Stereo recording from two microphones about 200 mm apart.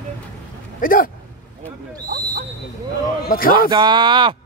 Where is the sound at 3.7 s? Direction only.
20° right (ahead or behind).